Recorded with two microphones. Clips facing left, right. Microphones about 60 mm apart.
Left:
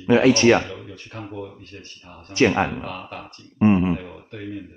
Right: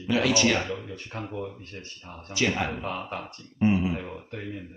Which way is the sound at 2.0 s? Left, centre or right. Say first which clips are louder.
Right 1 dB; centre.